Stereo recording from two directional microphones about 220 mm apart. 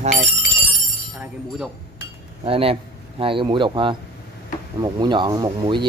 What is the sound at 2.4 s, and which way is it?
Speech, 25° right (ahead or behind).